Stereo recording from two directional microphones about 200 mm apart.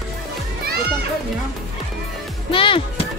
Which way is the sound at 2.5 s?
25° left (ahead or behind).